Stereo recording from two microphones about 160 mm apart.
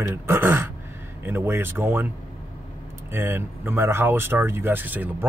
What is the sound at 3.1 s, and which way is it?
Speech, 15° right (ahead or behind).